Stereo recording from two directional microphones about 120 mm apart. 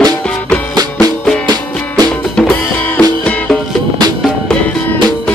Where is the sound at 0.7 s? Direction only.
35° right (ahead or behind).